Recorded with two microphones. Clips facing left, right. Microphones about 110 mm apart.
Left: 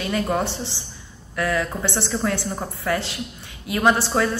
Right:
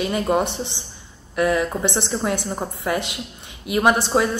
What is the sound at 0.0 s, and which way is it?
A woman's voice, 20° right (ahead or behind).